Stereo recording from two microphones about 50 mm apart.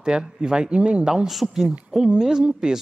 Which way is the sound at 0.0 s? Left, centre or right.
Centre.